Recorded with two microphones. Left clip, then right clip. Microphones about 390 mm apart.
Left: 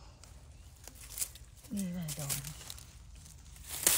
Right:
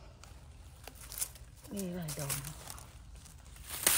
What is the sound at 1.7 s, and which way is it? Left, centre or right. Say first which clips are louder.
Speech: right 1 dB; centre.